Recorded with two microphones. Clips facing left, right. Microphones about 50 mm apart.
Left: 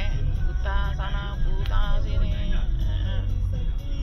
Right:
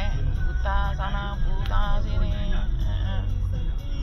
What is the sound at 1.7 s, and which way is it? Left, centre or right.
Music, centre.